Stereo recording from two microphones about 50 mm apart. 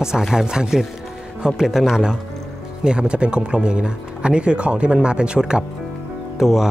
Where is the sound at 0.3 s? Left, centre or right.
Centre.